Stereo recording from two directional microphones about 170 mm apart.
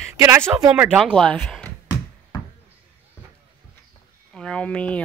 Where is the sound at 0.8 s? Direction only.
Centre (ahead or behind).